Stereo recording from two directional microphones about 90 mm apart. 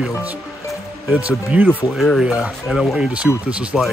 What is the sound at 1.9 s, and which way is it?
Speech, centre (ahead or behind).